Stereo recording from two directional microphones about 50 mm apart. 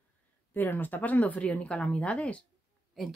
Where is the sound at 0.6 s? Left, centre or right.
Left.